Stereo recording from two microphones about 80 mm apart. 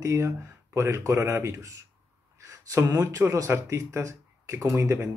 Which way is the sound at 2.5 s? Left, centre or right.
Right.